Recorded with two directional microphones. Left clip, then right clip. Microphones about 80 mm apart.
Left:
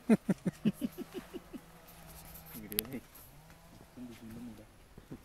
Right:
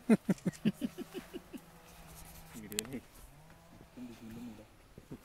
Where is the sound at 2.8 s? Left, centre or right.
Centre.